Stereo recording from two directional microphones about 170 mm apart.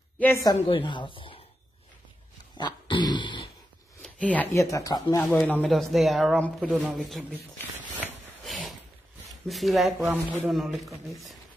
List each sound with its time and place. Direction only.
0.4 s a woman's voice: 25° left (ahead or behind)
2.5 s dog: 25° left (ahead or behind)
4.0 s speech: 5° left (ahead or behind)
5.2 s speech: 10° left (ahead or behind)
9.5 s speech: centre (ahead or behind)